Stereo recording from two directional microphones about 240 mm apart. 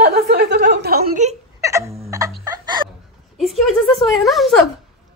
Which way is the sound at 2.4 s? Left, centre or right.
Centre.